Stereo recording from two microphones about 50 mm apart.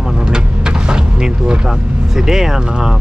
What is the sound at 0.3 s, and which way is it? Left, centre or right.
Vehicle, centre.